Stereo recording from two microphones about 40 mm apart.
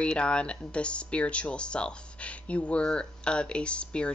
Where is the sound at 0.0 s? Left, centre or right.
Left.